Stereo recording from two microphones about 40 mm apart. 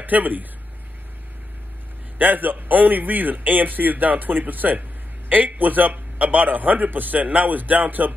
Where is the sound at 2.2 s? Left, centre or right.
Right.